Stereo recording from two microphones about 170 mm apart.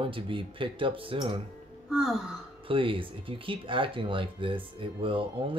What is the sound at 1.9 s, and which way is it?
Sigh, centre (ahead or behind).